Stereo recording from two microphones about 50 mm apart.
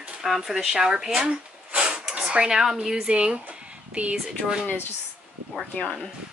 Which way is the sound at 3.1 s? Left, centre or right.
Right.